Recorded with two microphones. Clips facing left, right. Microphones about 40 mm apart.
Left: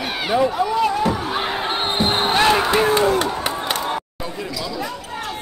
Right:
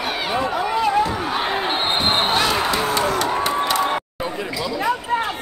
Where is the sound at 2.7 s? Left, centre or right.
Left.